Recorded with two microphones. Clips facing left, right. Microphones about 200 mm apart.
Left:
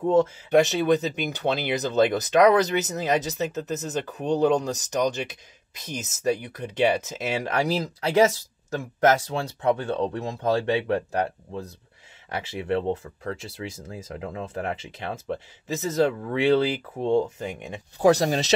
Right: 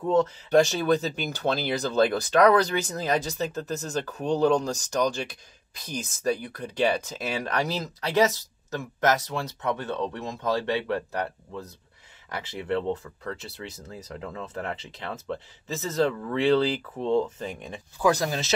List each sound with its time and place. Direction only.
0.0 s speech: 25° left (ahead or behind)
10.6 s speech: 20° left (ahead or behind)
18.0 s speech: 35° left (ahead or behind)